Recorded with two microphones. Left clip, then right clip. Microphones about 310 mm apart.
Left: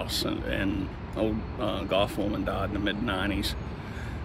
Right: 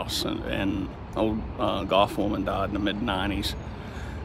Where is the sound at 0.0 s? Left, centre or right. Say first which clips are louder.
Right 1 dB; centre.